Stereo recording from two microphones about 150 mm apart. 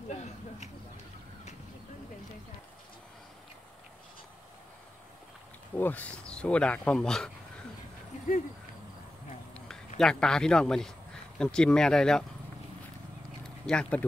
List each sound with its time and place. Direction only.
0.1 s a sound: 50° left (ahead or behind)
5.8 s speech: 10° left (ahead or behind)
9.9 s speech: 5° left (ahead or behind)
13.7 s speech: 5° left (ahead or behind)